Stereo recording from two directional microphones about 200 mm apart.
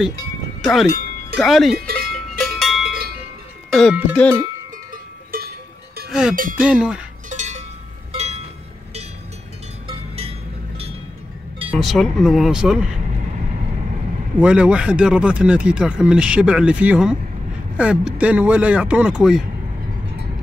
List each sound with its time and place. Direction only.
0.6 s speech: centre (ahead or behind)
1.8 s cowbell: 50° right (ahead or behind)
3.7 s speech: 5° left (ahead or behind)
4.9 s cowbell: 45° right (ahead or behind)
6.0 s cowbell: 5° right (ahead or behind)
6.3 s a sound: 45° right (ahead or behind)
6.6 s speech: 5° right (ahead or behind)
7.2 s cowbell: 35° right (ahead or behind)
8.1 s a sound: 35° right (ahead or behind)
11.8 s speech: centre (ahead or behind)
14.4 s speech: 5° right (ahead or behind)